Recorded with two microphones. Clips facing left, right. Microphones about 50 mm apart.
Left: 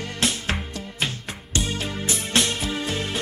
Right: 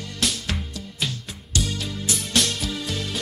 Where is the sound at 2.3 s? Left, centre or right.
Centre.